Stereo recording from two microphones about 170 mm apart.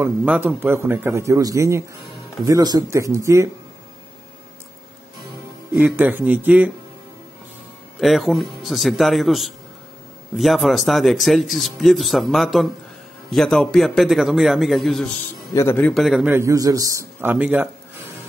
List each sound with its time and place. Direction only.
0.0 s a man's voice: 10° right (ahead or behind)
5.8 s a man's voice: 10° right (ahead or behind)
8.0 s speech: centre (ahead or behind)
15.5 s a man's voice: 15° left (ahead or behind)
15.9 s speech: centre (ahead or behind)
16.3 s a man's voice: 15° right (ahead or behind)